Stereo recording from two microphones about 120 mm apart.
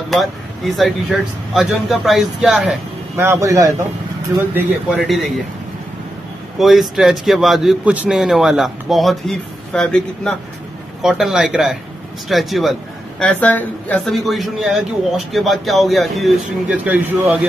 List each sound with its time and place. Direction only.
0.7 s speech: centre (ahead or behind)
3.2 s a man's voice: 25° right (ahead or behind)
4.9 s speech: centre (ahead or behind)
6.6 s speech: centre (ahead or behind)
13.2 s speech: 15° left (ahead or behind)
16.6 s a man's voice: 10° right (ahead or behind)